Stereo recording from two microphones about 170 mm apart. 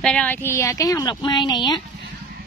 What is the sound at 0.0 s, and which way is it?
A woman's voice, 5° left (ahead or behind).